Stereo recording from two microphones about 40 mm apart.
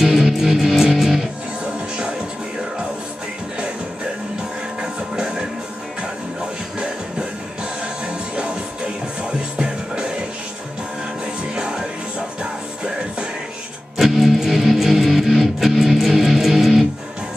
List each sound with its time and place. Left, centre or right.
0.0 s music: centre
1.6 s music: right
4.8 s music: centre
7.8 s music: right
11.5 s music: centre
13.9 s music: centre